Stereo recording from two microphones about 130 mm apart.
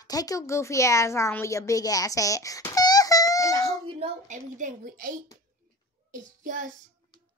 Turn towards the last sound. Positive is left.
turn(degrees=-75)  # may be behind; listen again after turning